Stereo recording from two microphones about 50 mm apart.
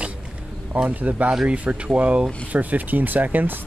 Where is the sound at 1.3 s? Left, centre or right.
Centre.